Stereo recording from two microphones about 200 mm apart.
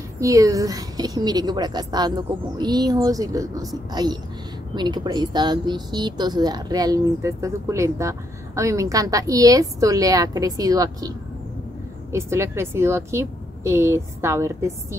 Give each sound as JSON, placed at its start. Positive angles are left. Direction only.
{"t": 0.2, "sound": "a woman's voice", "side_deg": -15}